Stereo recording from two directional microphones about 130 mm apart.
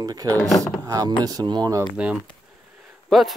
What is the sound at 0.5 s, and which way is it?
Speech, 5° left (ahead or behind).